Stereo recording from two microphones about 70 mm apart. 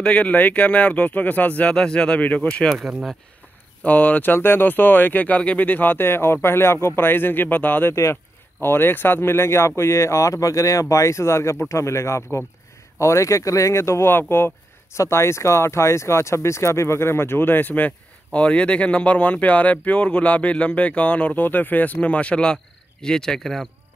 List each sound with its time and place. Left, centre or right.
0.0 s speech: centre
3.8 s speech: left
7.9 s speech: left; by 23.7 s centre